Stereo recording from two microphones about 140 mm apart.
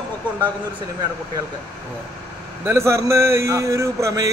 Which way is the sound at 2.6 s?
20° right (ahead or behind).